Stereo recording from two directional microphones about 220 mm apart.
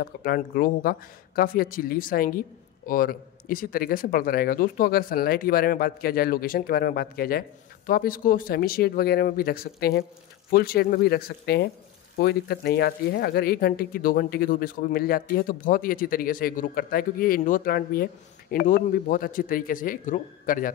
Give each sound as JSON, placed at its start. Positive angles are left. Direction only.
{"t": 0.0, "sound": "speech", "side_deg": 40}